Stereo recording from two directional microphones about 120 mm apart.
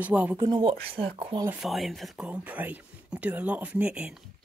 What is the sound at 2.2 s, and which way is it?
Speech, 15° right (ahead or behind).